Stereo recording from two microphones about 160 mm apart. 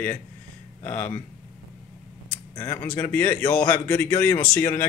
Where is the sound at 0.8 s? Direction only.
10° left (ahead or behind).